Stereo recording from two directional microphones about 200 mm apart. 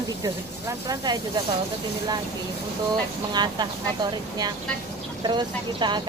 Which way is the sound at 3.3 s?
20° right (ahead or behind).